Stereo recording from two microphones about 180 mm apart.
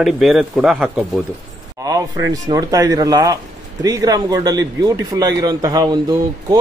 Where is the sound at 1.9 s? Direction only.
20° right (ahead or behind).